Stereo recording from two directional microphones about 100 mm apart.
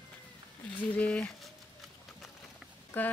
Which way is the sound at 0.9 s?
10° left (ahead or behind).